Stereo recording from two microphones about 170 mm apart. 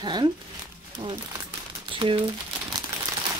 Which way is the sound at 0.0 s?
25° right (ahead or behind).